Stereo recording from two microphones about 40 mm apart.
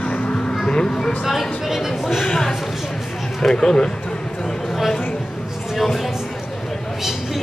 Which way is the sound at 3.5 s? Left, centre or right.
Centre.